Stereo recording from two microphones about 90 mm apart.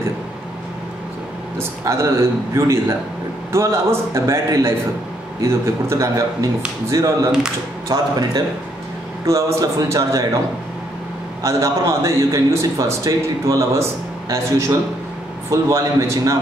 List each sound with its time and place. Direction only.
1.6 s speech: 30° right (ahead or behind)
7.9 s a man's voice: 45° right (ahead or behind)
11.4 s speech: 35° right (ahead or behind)